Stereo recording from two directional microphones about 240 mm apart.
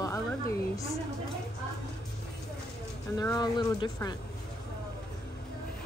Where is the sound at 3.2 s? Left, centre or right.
Centre.